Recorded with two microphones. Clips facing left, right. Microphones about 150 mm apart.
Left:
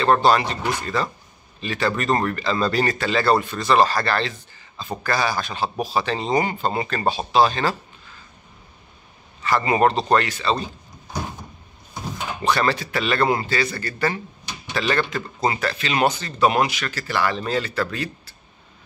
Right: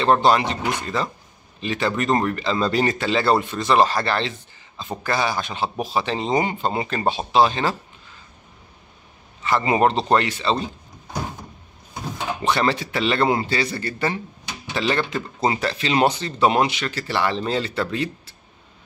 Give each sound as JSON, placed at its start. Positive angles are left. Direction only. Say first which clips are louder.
{"t": 0.0, "sound": "speech", "louder": "even", "side_deg": -20}
{"t": 9.4, "sound": "speech", "louder": "even", "side_deg": -20}
{"t": 12.4, "sound": "speech", "louder": "even", "side_deg": -20}